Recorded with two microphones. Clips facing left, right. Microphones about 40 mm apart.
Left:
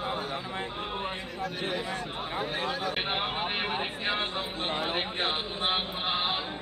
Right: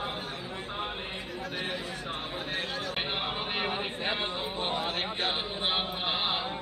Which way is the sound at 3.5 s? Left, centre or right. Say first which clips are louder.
Left 1 dB; centre.